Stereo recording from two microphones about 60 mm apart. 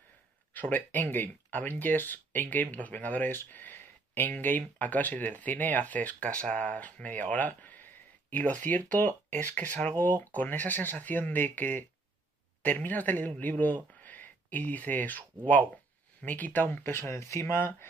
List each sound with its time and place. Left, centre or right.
0.5 s a man's voice: left
17.1 s speech: left